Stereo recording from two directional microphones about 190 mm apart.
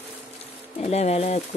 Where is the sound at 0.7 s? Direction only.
35° left (ahead or behind).